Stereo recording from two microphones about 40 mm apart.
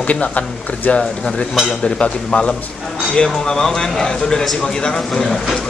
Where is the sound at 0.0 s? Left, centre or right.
Left.